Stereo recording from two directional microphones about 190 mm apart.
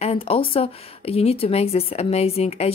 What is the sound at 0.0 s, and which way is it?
Speech, 30° left (ahead or behind).